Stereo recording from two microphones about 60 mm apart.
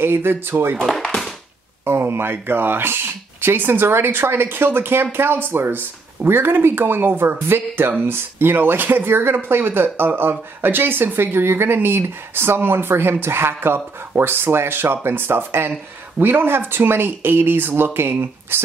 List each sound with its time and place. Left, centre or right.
0.0 s speech: right
0.8 s a sound: centre
1.9 s speech: right